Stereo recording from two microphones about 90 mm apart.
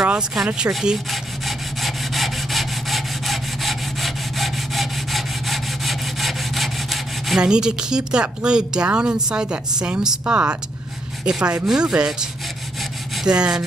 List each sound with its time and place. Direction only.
0.5 s rub: 5° right (ahead or behind)
10.3 s speech: 20° right (ahead or behind)
11.2 s rub: 10° right (ahead or behind)
13.1 s a sound: 10° right (ahead or behind)